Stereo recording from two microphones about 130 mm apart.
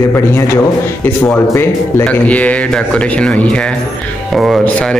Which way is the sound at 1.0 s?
20° left (ahead or behind).